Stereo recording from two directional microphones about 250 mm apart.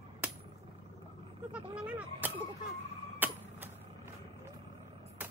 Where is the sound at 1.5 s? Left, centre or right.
Centre.